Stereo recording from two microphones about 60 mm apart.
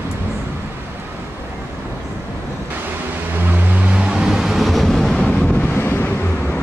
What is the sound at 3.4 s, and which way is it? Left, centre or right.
Vehicle, right.